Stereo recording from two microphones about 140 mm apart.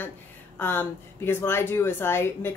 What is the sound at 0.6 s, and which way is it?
Speech, 15° left (ahead or behind).